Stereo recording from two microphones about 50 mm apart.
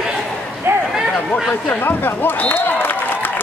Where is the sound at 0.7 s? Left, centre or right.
Right.